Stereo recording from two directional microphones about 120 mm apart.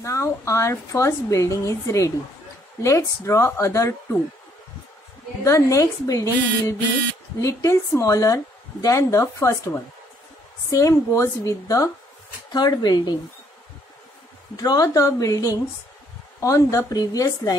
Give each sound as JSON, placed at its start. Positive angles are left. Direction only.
{"t": 0.0, "sound": "a woman's voice", "side_deg": 25}
{"t": 5.4, "sound": "a woman's voice", "side_deg": 25}
{"t": 14.6, "sound": "a woman's voice", "side_deg": 30}